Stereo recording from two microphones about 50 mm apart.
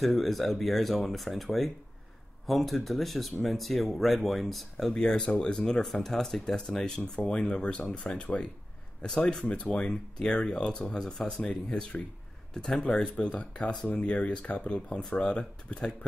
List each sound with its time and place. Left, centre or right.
0.0 s speech: centre